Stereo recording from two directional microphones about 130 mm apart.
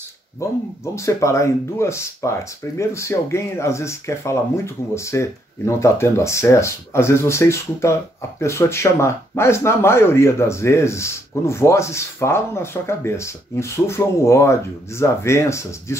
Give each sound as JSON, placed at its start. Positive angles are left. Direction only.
{"t": 0.4, "sound": "speech", "side_deg": 20}